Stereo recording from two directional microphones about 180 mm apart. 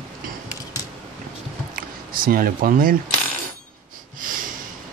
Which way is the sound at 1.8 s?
55° right (ahead or behind).